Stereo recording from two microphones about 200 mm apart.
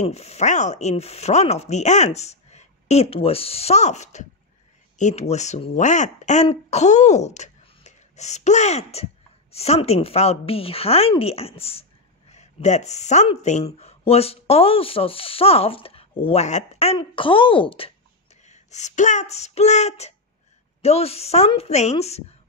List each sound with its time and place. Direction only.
0.0 s speech: 30° left (ahead or behind)